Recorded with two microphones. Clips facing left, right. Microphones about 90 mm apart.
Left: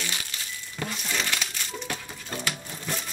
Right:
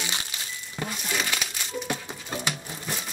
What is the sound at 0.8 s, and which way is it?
Music, 10° right (ahead or behind).